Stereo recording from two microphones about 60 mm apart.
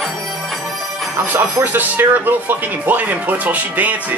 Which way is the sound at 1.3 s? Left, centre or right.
Right.